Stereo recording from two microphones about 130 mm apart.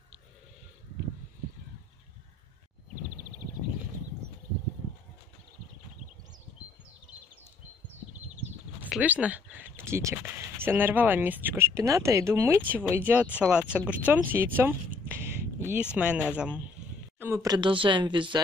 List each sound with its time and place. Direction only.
9.0 s speech: 10° right (ahead or behind)
15.1 s a sound: 20° right (ahead or behind)
16.0 s speech: 10° right (ahead or behind)
17.2 s speech: 20° right (ahead or behind)
17.6 s speech: 40° right (ahead or behind)